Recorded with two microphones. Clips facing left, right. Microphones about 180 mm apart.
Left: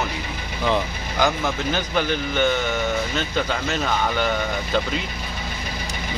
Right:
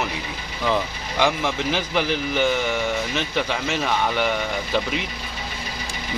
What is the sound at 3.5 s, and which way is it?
Speech, 5° right (ahead or behind).